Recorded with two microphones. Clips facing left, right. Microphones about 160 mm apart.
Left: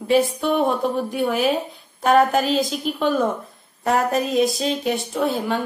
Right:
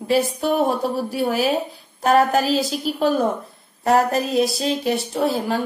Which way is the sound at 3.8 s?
35° right (ahead or behind).